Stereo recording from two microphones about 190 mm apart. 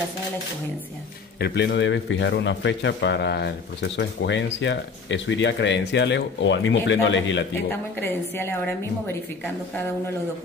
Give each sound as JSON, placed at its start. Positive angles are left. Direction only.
{"t": 1.4, "sound": "a man's voice", "side_deg": 65}
{"t": 7.7, "sound": "a woman's voice", "side_deg": 10}